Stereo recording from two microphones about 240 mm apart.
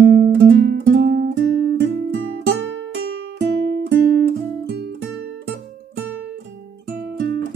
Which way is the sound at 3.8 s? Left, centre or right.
Right.